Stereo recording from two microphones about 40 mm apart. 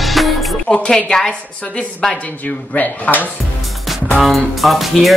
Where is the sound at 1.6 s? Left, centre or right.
Left.